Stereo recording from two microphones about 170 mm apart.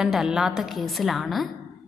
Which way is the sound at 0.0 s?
5° right (ahead or behind).